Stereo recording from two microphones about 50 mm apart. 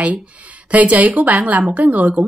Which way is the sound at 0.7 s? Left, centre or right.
Right.